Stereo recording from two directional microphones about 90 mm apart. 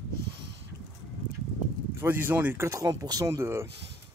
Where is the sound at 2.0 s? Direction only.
25° right (ahead or behind).